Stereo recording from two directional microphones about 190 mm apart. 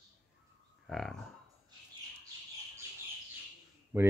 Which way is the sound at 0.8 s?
Centre (ahead or behind).